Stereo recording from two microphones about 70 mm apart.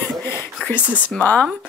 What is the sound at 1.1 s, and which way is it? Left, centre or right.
Speech, left.